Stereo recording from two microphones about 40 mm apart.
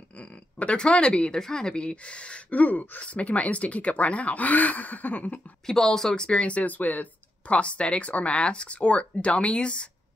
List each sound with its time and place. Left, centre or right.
0.1 s speech: left
5.7 s speech: centre
6.1 s speech: left
7.4 s speech: left